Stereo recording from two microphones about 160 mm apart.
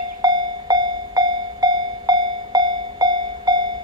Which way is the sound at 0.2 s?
25° right (ahead or behind).